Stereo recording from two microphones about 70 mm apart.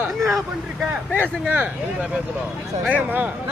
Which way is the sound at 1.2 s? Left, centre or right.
Right.